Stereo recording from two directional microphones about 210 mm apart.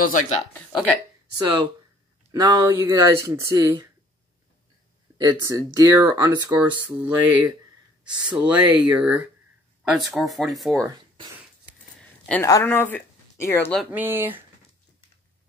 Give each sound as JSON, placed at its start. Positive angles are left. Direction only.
{"t": 0.0, "sound": "speech", "side_deg": 40}
{"t": 1.4, "sound": "speech", "side_deg": -20}
{"t": 5.1, "sound": "speech", "side_deg": -20}
{"t": 12.3, "sound": "speech", "side_deg": 10}
{"t": 13.9, "sound": "speech", "side_deg": -10}